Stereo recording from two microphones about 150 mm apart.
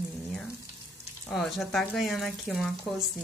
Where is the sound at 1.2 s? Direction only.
Centre (ahead or behind).